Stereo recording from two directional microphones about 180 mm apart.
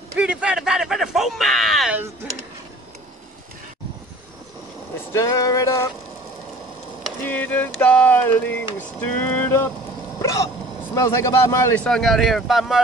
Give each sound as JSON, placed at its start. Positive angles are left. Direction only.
{"t": 0.1, "sound": "a sound", "side_deg": -5}
{"t": 5.1, "sound": "speech", "side_deg": 15}
{"t": 7.0, "sound": "speech", "side_deg": 10}
{"t": 10.2, "sound": "vehicle", "side_deg": 20}
{"t": 11.0, "sound": "speech", "side_deg": 15}
{"t": 11.9, "sound": "speech", "side_deg": 0}